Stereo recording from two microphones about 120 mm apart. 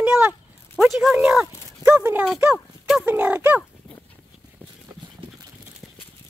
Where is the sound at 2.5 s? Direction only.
Centre (ahead or behind).